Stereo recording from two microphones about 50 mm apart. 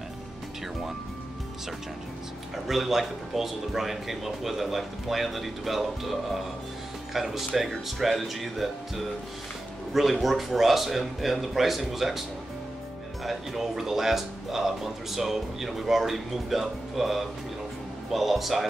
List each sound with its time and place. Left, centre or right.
2.5 s speech: centre
7.2 s speech: centre
13.2 s speech: centre